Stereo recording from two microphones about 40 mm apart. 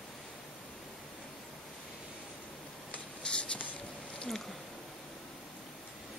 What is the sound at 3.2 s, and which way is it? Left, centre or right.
Writing, left.